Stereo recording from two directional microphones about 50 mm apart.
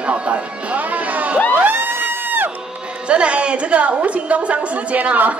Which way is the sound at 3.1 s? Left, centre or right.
Right.